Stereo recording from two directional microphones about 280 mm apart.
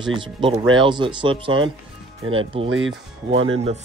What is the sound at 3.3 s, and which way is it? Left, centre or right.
Speech, right.